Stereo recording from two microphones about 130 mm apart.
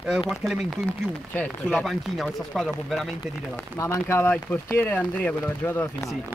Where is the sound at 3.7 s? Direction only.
25° left (ahead or behind).